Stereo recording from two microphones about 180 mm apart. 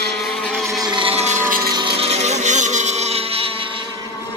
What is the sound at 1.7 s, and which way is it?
Motorboat, 30° right (ahead or behind).